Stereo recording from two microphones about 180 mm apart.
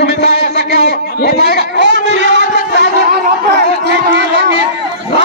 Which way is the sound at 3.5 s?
70° right (ahead or behind).